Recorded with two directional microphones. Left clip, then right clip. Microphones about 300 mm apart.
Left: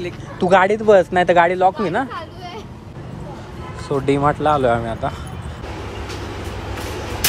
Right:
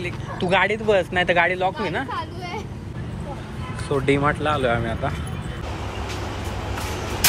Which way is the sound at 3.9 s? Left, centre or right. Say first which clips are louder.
Left 3 dB; centre.